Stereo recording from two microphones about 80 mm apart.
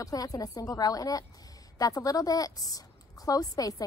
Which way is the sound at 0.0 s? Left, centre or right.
Left.